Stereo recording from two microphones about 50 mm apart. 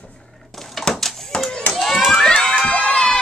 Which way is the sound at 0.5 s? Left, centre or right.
Centre.